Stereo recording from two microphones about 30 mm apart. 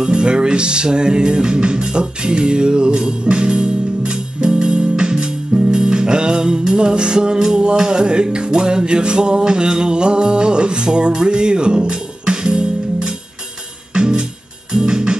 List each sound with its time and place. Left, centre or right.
0.0 s music: right